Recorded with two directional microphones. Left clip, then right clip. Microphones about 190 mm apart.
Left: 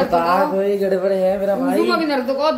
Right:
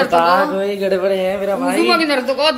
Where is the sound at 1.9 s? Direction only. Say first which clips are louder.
Right 3 dB; 10° left (ahead or behind).